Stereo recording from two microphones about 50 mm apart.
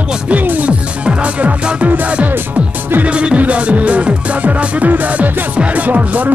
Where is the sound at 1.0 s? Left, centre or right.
Right.